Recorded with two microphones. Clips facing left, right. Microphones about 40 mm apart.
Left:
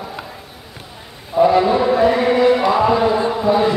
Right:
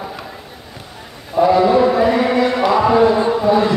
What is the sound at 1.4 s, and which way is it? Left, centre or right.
Speech, centre.